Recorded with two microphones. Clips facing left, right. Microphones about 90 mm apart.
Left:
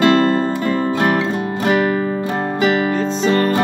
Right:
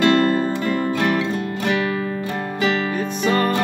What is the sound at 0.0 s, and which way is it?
Music, 25° left (ahead or behind).